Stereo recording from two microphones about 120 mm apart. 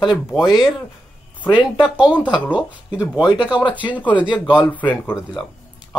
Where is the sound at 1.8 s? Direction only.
10° right (ahead or behind).